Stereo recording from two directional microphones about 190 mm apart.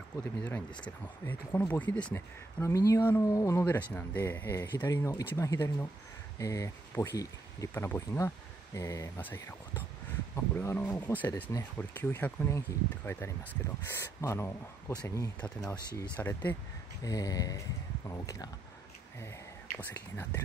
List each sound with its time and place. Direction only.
0.2 s speech: 10° left (ahead or behind)
17.0 s a sound: 20° left (ahead or behind)
19.9 s speech: 10° left (ahead or behind)